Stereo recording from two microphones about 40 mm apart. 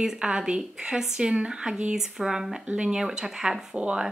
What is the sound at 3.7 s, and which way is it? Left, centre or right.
Speech, right.